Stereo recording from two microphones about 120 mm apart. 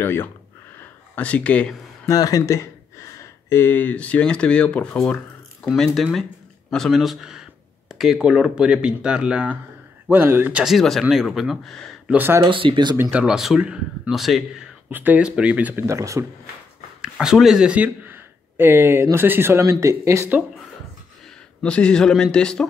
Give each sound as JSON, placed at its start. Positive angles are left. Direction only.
{"t": 0.0, "sound": "speech", "side_deg": 20}
{"t": 0.7, "sound": "a sound", "side_deg": 10}
{"t": 2.0, "sound": "speech", "side_deg": 30}
{"t": 5.6, "sound": "speech", "side_deg": 0}
{"t": 10.6, "sound": "speech", "side_deg": 0}
{"t": 12.1, "sound": "speech", "side_deg": -15}
{"t": 12.4, "sound": "speech", "side_deg": -45}
{"t": 12.9, "sound": "speech", "side_deg": -20}
{"t": 13.2, "sound": "speech", "side_deg": 0}
{"t": 14.9, "sound": "speech", "side_deg": -15}
{"t": 15.8, "sound": "speech", "side_deg": -25}
{"t": 17.0, "sound": "speech", "side_deg": -5}
{"t": 21.6, "sound": "speech", "side_deg": 10}